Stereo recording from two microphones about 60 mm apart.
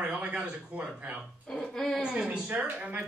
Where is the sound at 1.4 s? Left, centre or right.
Centre.